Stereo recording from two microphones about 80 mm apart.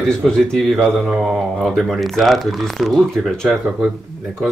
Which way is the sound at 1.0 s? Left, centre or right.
Centre.